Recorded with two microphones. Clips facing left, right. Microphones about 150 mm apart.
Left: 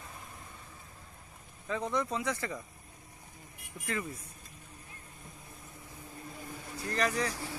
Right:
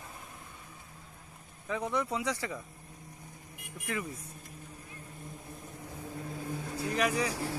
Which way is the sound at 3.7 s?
10° right (ahead or behind).